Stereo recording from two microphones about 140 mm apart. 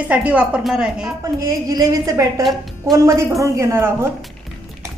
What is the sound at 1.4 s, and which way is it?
Speech, 25° right (ahead or behind).